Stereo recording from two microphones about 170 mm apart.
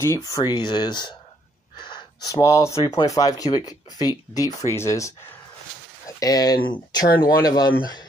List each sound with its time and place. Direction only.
0.0 s speech: 15° left (ahead or behind)